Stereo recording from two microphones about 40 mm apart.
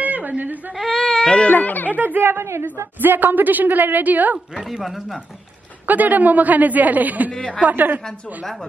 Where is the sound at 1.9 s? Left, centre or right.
Right.